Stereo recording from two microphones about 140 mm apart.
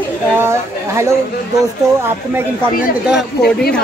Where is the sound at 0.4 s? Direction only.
20° right (ahead or behind).